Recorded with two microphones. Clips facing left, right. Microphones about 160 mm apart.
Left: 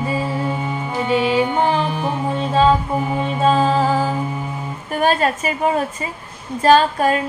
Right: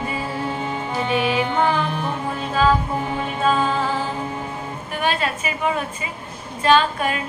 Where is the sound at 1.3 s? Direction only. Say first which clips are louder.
Left 3 dB; 30° left (ahead or behind).